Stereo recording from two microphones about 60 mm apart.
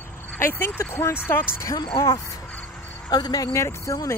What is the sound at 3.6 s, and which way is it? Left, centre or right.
Speech, left.